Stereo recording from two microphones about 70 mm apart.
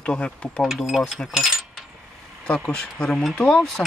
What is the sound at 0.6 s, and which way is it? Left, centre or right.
Mechanisms, centre.